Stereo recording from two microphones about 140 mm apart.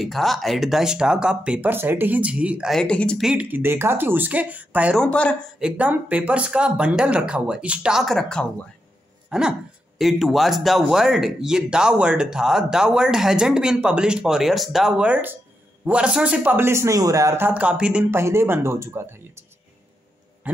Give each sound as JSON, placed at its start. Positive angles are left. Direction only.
{"t": 0.0, "sound": "a man's voice", "side_deg": 0}
{"t": 2.7, "sound": "speech", "side_deg": 5}
{"t": 3.2, "sound": "a man's voice", "side_deg": -5}
{"t": 4.9, "sound": "speech", "side_deg": 5}
{"t": 5.6, "sound": "a man's voice", "side_deg": -10}
{"t": 20.4, "sound": "a sound", "side_deg": -10}